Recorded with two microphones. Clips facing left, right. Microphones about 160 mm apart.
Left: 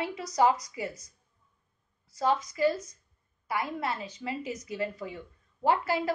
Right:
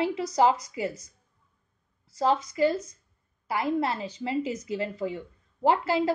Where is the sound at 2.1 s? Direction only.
30° right (ahead or behind).